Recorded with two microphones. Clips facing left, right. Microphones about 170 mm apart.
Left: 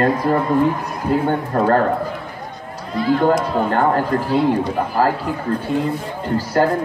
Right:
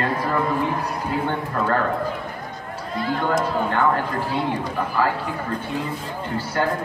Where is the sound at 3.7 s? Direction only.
40° left (ahead or behind).